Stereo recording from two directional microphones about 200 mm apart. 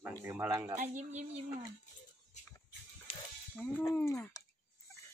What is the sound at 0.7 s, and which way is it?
Speech, 35° right (ahead or behind).